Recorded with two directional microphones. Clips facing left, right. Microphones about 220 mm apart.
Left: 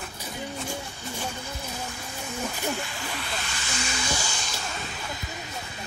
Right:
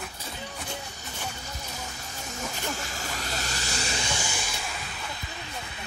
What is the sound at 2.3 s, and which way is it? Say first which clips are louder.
Snake: left 4 dB; 45° right (ahead or behind).